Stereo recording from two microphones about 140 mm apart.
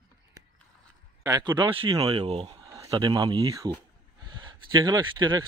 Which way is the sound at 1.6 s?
40° right (ahead or behind).